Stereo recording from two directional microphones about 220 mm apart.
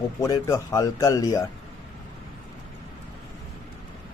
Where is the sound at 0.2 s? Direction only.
15° left (ahead or behind).